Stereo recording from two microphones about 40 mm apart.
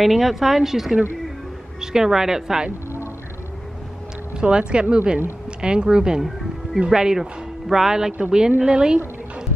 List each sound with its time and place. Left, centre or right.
0.0 s a woman's voice: centre
4.4 s a woman's voice: right